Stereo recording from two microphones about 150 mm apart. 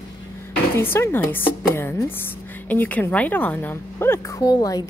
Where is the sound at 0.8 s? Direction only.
15° left (ahead or behind).